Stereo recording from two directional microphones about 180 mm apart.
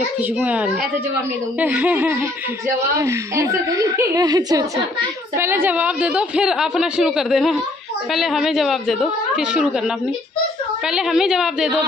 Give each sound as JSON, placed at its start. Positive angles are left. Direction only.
{"t": 0.4, "sound": "a woman's voice", "side_deg": -10}